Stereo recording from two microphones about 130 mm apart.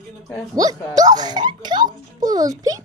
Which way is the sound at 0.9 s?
30° right (ahead or behind).